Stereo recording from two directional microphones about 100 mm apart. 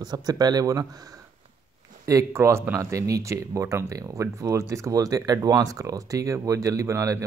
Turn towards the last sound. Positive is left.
turn(degrees=-30)  # may be behind; listen again after turning